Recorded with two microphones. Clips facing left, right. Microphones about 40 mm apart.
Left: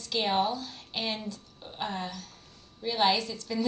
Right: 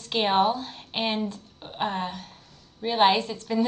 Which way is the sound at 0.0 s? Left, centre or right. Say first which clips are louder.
Right 5 dB; right.